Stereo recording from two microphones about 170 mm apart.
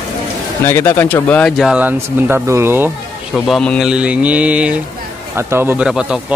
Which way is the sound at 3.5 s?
5° left (ahead or behind).